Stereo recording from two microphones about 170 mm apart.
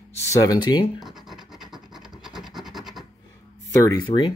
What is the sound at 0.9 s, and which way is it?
Scratch, centre (ahead or behind).